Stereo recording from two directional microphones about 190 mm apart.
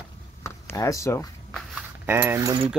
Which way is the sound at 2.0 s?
15° right (ahead or behind).